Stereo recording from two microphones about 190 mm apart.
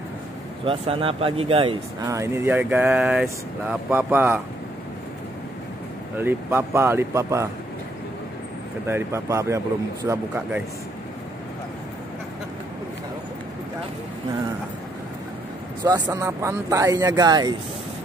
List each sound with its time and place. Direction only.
0.7 s speech: 30° right (ahead or behind)
2.0 s speech: 15° right (ahead or behind)
6.1 s speech: 10° right (ahead or behind)
8.8 s speech: 15° right (ahead or behind)
15.8 s speech: 20° right (ahead or behind)